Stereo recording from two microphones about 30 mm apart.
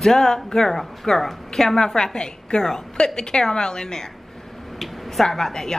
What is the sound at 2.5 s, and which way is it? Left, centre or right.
A woman's voice, left.